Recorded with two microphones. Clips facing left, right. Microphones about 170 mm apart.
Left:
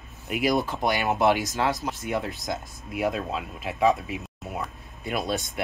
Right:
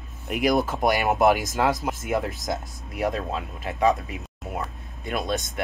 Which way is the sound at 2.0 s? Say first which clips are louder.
Right 3 dB; 40° right (ahead or behind).